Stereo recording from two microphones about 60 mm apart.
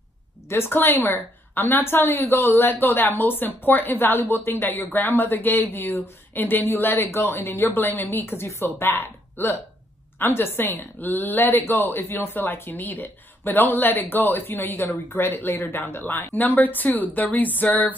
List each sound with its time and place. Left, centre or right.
0.5 s a woman's voice: left